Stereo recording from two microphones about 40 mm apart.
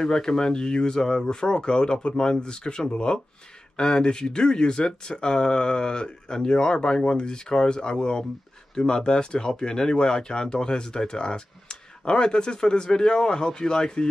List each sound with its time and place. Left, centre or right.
0.0 s speech: centre